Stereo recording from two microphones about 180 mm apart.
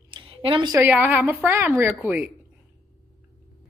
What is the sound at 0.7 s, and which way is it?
A woman's voice, 10° right (ahead or behind).